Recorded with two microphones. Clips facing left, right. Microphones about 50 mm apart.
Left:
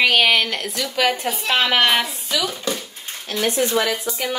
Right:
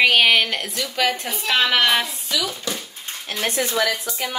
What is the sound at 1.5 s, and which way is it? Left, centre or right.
Speech, left.